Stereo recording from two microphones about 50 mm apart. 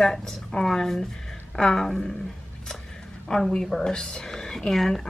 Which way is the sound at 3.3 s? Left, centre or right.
Centre.